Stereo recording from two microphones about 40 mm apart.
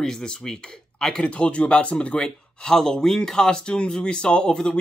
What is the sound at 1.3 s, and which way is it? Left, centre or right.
Speech, left.